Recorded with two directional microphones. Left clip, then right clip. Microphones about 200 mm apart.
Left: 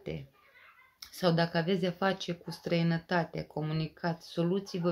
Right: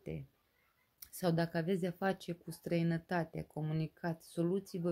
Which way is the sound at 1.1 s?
45° right (ahead or behind).